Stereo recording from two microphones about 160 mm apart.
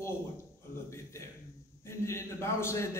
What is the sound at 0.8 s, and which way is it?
A man's voice, 15° left (ahead or behind).